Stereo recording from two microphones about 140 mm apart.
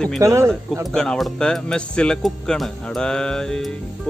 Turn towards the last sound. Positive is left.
turn(degrees=5)  # may be behind; listen again after turning